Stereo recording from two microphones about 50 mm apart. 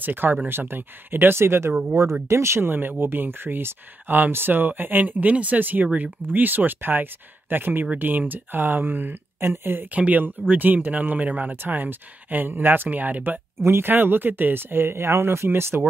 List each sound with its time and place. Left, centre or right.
0.0 s speech: right
2.7 s speech: right
9.9 s speech: right
13.6 s speech: right